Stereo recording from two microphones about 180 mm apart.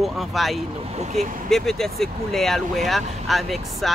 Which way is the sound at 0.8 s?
35° right (ahead or behind).